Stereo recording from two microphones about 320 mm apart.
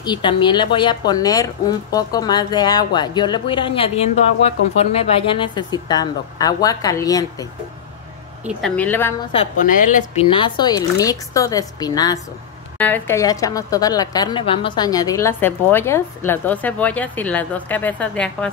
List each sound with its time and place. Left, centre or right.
0.0 s speech: centre
8.5 s speech: centre
9.3 s speech: left; by 18.5 s centre